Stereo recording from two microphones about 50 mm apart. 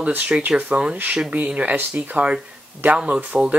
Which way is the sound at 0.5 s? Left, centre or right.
Right.